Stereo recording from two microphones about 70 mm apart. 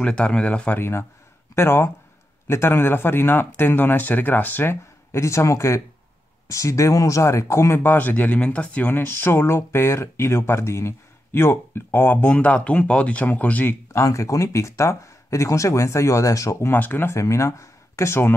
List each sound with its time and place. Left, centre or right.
0.0 s speech: centre
0.7 s speech: left
5.1 s speech: left
13.9 s speech: left
16.7 s speech: left
17.1 s speech: left